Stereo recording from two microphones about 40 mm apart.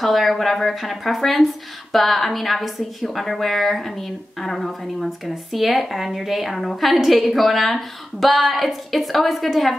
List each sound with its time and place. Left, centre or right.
0.0 s a woman's voice: centre